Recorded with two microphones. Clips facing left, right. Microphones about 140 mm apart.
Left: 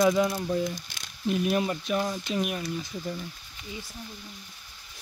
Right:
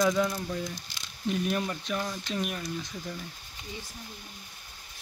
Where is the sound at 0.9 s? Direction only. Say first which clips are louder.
Even; 55° left (ahead or behind).